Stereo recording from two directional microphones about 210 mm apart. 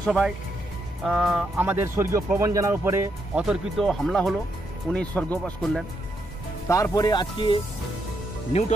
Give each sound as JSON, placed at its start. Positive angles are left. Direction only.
{"t": 0.0, "sound": "speech", "side_deg": 0}
{"t": 6.7, "sound": "speech", "side_deg": 15}